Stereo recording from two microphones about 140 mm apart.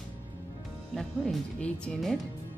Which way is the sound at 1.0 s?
5° left (ahead or behind).